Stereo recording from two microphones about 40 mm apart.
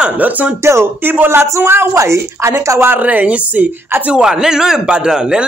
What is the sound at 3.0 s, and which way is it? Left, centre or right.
Speech, right.